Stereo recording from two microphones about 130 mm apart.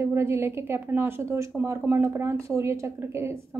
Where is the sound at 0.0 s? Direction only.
20° right (ahead or behind).